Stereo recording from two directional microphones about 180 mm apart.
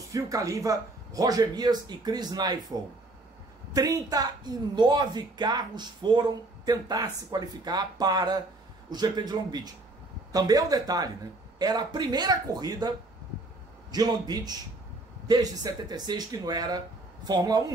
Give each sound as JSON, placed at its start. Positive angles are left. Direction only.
{"t": 0.1, "sound": "a woman's voice", "side_deg": -20}
{"t": 13.9, "sound": "a woman's voice", "side_deg": -20}